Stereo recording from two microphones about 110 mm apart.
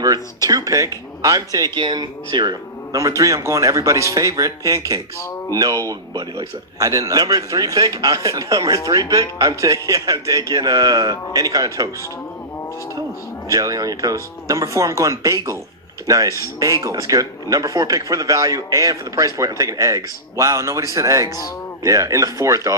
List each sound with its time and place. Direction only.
0.0 s speech: 35° right (ahead or behind)
1.8 s a man's voice: 40° right (ahead or behind)
13.5 s a man's voice: 30° right (ahead or behind)